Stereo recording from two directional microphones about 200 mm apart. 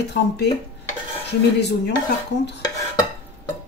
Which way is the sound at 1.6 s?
55° left (ahead or behind).